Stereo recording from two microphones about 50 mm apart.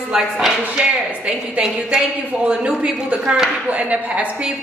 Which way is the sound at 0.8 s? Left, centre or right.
Right.